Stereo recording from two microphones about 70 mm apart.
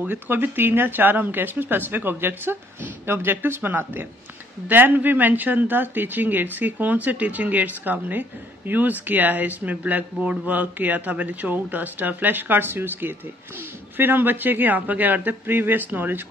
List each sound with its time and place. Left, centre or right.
0.0 s speech: right